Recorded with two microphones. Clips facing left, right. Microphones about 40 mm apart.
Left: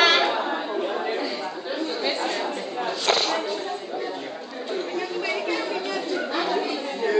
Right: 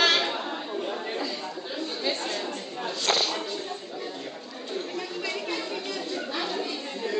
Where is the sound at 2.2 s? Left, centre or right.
Centre.